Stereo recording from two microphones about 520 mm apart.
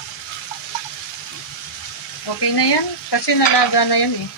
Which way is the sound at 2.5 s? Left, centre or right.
Left.